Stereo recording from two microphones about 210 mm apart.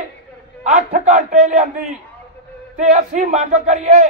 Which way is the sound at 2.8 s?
35° right (ahead or behind).